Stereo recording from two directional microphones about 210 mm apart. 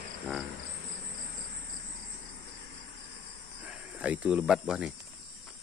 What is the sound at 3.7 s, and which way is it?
Speech, 5° right (ahead or behind).